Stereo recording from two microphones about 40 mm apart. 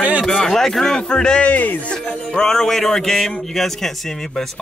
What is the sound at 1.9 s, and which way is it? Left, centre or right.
Music, left.